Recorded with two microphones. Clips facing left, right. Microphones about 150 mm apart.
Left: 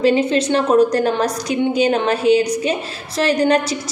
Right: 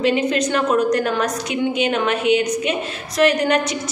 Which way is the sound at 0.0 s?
30° left (ahead or behind).